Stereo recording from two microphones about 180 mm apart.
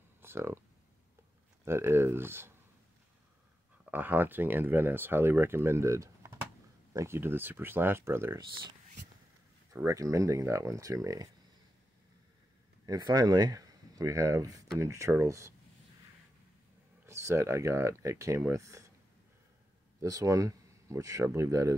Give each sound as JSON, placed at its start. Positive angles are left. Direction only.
{"t": 0.2, "sound": "a sound", "side_deg": -15}
{"t": 1.6, "sound": "speech", "side_deg": -15}
{"t": 3.9, "sound": "speech", "side_deg": -10}
{"t": 9.8, "sound": "speech", "side_deg": -15}
{"t": 12.8, "sound": "speech", "side_deg": -20}
{"t": 17.0, "sound": "speech", "side_deg": -15}
{"t": 20.0, "sound": "speech", "side_deg": -20}